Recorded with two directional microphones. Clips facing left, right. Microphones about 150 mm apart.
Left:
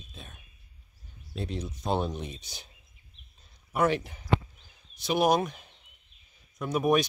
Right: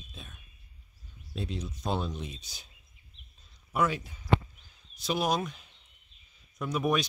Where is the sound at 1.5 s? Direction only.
60° left (ahead or behind).